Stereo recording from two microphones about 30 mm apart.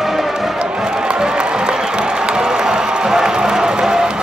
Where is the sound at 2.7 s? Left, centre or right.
Centre.